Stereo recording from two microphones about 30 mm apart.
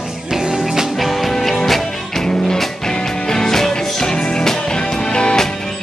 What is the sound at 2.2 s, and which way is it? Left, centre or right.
Music, left.